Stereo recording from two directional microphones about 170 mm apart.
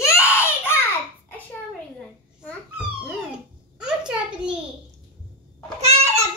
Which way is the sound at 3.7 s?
5° right (ahead or behind).